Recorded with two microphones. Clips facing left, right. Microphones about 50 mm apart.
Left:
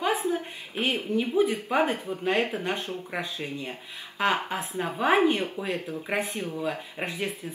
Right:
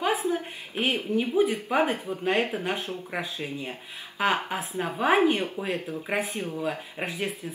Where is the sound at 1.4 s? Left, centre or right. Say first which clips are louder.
Even; centre.